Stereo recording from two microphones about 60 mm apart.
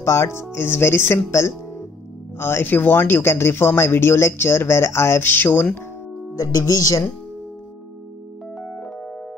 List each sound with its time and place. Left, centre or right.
0.0 s speech: left
6.3 s speech: left
8.5 s piano: centre